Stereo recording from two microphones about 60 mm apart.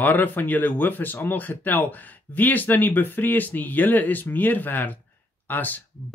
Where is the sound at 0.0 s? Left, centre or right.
Left.